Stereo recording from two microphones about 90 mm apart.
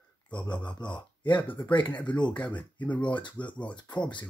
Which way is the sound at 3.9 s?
60° left (ahead or behind).